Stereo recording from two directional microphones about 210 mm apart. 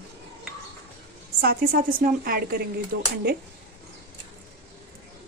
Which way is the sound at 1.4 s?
45° right (ahead or behind).